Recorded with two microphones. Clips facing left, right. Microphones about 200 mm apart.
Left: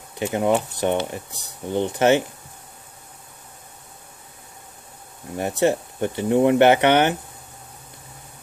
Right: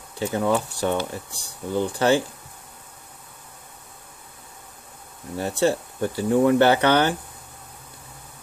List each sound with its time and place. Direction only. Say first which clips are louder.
0.2 s speech: left 2 dB; 20° left (ahead or behind)
5.4 s speech: left 2 dB; 20° left (ahead or behind)